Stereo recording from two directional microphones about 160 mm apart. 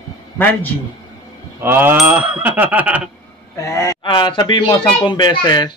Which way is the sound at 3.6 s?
20° left (ahead or behind).